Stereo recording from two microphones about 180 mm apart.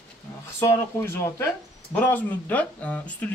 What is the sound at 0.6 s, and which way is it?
Speech, 15° left (ahead or behind).